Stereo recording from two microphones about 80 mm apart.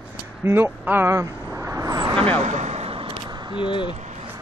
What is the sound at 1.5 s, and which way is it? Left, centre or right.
Vehicle, right.